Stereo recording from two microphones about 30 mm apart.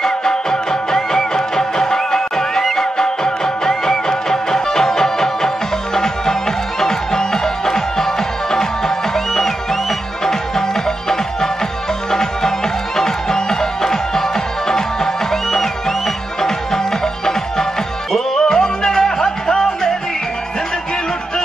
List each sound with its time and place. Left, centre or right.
0.0 s music: left
6.8 s music: centre
12.1 s music: centre
16.3 s music: centre